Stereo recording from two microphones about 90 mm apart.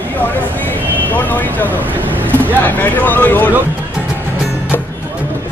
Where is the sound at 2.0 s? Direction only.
20° right (ahead or behind).